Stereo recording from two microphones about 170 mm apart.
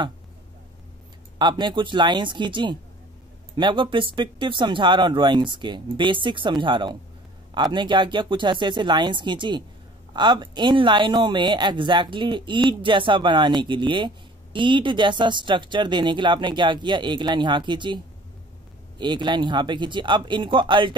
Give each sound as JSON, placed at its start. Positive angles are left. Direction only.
{"t": 1.4, "sound": "speech", "side_deg": -25}